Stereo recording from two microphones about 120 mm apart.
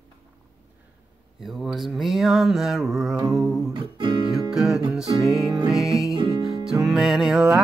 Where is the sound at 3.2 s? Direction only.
30° right (ahead or behind).